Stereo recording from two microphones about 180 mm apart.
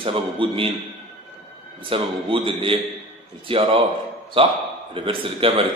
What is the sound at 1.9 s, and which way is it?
A man's voice, 30° right (ahead or behind).